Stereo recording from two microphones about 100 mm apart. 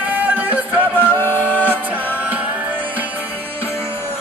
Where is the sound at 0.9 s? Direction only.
20° left (ahead or behind).